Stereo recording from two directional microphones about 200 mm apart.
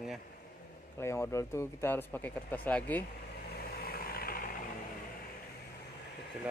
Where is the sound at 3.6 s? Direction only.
50° left (ahead or behind).